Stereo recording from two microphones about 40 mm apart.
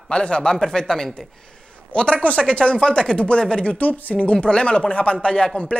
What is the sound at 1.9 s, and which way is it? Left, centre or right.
Speech, left.